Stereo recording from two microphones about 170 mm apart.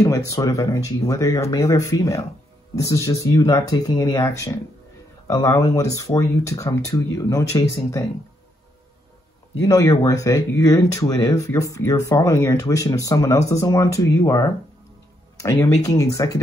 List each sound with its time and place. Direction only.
0.0 s speech: 20° left (ahead or behind)
9.6 s speech: 20° left (ahead or behind)